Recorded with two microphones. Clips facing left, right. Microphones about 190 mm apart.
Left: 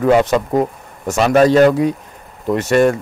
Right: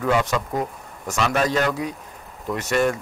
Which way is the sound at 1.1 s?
40° left (ahead or behind).